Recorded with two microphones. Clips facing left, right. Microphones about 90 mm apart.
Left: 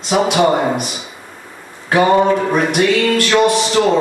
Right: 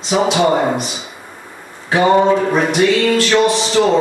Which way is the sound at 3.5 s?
10° left (ahead or behind).